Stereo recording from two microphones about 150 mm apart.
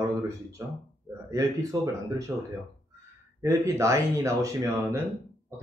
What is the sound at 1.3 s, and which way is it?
Speech, 20° right (ahead or behind).